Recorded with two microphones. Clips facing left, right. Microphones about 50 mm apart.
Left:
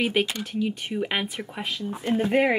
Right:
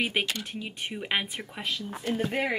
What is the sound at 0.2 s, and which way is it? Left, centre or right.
A woman's voice, centre.